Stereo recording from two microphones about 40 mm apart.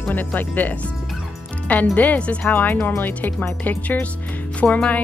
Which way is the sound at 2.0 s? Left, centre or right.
Left.